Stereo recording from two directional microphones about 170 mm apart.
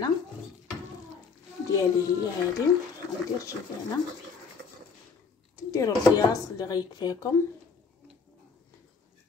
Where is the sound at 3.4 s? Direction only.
20° left (ahead or behind).